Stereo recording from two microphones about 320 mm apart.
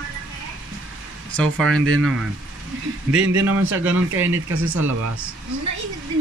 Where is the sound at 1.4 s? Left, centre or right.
Right.